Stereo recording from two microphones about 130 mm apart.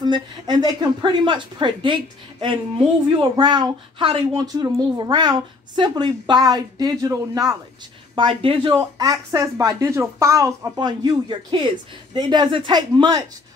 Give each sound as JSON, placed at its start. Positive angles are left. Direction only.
{"t": 0.0, "sound": "a woman's voice", "side_deg": -35}
{"t": 8.2, "sound": "a woman's voice", "side_deg": -40}
{"t": 8.7, "sound": "a woman's voice", "side_deg": -30}